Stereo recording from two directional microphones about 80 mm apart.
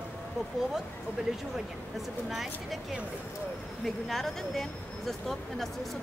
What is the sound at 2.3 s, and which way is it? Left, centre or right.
Speech, centre.